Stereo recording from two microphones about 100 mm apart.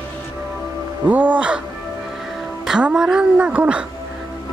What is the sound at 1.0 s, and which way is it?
Speech, 15° right (ahead or behind).